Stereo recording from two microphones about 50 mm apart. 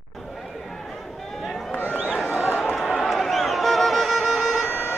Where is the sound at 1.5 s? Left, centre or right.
Centre.